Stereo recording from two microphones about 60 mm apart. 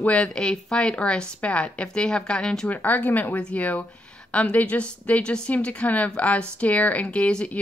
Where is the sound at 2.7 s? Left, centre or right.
Left.